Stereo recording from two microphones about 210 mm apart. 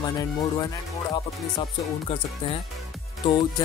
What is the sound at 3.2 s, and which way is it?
Speech, 25° left (ahead or behind).